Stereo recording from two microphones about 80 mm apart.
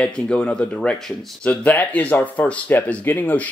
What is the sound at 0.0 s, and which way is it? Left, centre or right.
Speech, centre.